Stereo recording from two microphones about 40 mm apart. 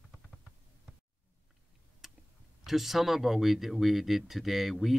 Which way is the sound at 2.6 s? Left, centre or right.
Centre.